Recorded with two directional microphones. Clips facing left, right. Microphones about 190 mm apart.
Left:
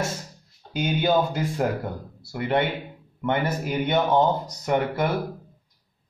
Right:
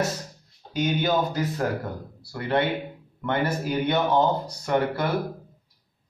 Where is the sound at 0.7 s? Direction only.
25° left (ahead or behind).